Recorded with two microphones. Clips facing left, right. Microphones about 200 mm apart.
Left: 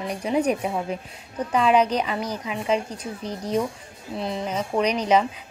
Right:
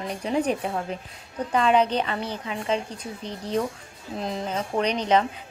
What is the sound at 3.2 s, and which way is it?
Speech, 35° left (ahead or behind).